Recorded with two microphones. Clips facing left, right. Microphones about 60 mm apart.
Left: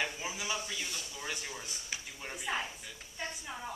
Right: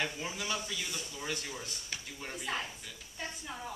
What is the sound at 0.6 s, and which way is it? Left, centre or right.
Speech, centre.